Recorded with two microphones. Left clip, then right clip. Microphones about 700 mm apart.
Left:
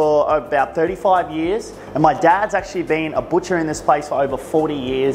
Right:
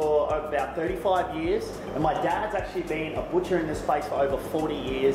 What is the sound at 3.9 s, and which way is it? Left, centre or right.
Speech, left.